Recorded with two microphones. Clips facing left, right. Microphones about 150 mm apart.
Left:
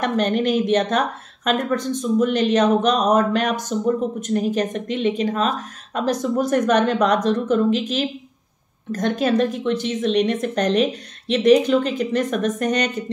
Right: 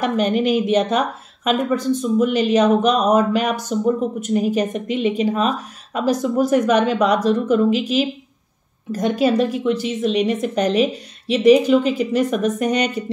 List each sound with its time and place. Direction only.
0.0 s speech: 10° right (ahead or behind)